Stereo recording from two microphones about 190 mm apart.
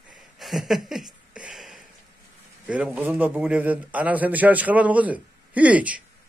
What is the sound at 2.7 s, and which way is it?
A man's voice, 10° right (ahead or behind).